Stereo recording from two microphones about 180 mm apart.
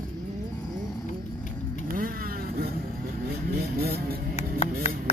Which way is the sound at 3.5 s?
60° right (ahead or behind).